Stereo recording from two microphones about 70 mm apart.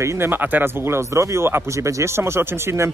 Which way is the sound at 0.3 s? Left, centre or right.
Right.